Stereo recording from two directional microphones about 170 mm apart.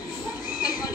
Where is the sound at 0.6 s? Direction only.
25° left (ahead or behind).